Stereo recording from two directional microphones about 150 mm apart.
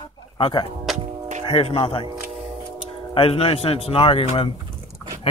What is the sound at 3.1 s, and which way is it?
Speech, 40° left (ahead or behind).